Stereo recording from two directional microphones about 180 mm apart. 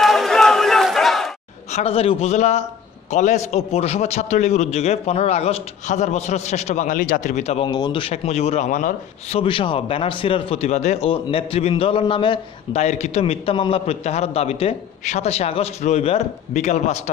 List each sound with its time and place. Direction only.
0.0 s crowd: centre (ahead or behind)
1.7 s a man's voice: 35° left (ahead or behind)
9.4 s speech: 30° left (ahead or behind)
12.8 s a man's voice: 40° left (ahead or behind)